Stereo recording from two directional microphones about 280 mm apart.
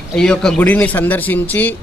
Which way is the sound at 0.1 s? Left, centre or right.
Centre.